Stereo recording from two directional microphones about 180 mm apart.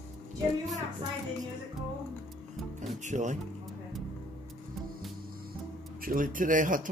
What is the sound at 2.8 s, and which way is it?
Speech, 40° right (ahead or behind).